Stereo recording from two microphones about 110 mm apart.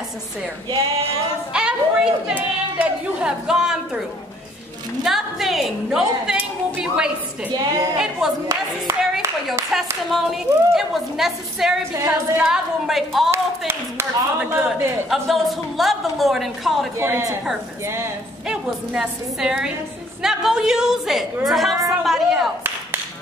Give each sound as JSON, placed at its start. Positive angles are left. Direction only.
{"t": 1.5, "sound": "a woman's voice", "side_deg": -10}
{"t": 5.0, "sound": "a woman's voice", "side_deg": 0}
{"t": 7.5, "sound": "a woman's voice", "side_deg": -35}
{"t": 8.2, "sound": "a woman's voice", "side_deg": -5}
{"t": 9.7, "sound": "a woman's voice", "side_deg": 0}
{"t": 13.3, "sound": "speech", "side_deg": -25}
{"t": 14.4, "sound": "a woman's voice", "side_deg": -10}
{"t": 17.0, "sound": "speech", "side_deg": -25}
{"t": 18.5, "sound": "a woman's voice", "side_deg": -5}